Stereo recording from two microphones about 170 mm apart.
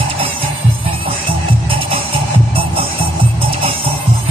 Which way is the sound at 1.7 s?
30° right (ahead or behind).